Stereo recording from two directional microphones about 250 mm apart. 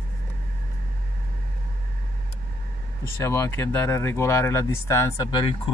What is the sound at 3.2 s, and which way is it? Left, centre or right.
Speech, centre.